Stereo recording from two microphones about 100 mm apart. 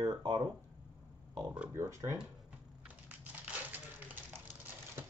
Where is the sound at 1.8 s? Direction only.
30° right (ahead or behind).